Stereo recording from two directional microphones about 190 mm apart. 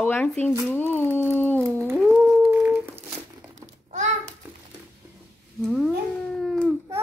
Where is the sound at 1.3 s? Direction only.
10° left (ahead or behind).